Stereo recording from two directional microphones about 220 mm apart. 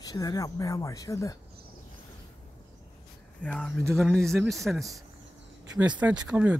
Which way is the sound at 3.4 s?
5° left (ahead or behind).